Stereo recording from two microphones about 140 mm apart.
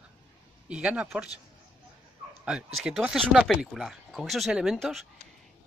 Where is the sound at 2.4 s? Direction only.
5° right (ahead or behind).